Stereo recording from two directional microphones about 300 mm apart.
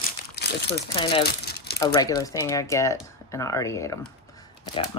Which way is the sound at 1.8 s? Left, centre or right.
Centre.